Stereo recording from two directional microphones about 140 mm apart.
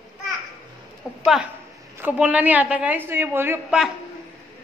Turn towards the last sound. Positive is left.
turn(degrees=-15)  # may be behind; listen again after turning